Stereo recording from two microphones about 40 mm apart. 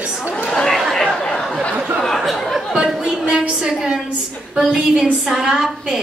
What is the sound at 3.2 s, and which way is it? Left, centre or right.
A woman's voice, right.